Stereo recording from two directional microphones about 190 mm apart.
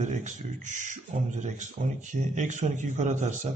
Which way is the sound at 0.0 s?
40° right (ahead or behind).